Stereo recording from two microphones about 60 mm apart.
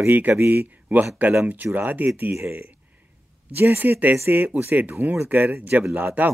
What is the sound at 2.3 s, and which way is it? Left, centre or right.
Speech, right.